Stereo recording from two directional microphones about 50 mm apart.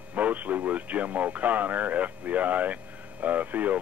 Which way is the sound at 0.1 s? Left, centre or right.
Right.